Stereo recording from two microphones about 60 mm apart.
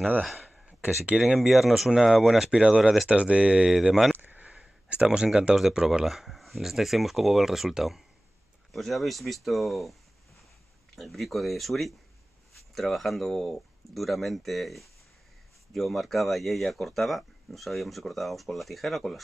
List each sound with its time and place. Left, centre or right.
0.7 s speech: centre
3.1 s speech: centre
3.6 s speech: centre
4.2 s speech: right; by 9.9 s centre
11.0 s speech: centre